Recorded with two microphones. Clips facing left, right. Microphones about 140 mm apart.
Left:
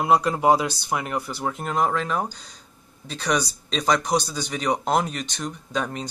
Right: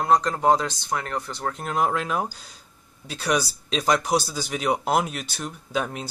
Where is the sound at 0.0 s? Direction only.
10° left (ahead or behind).